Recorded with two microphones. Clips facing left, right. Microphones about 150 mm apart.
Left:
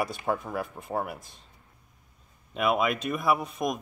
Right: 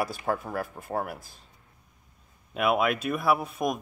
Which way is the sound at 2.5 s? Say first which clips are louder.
Right 1 dB; 5° right (ahead or behind).